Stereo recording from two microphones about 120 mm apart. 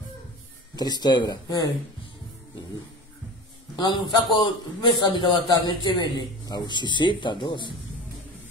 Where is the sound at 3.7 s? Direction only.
40° left (ahead or behind).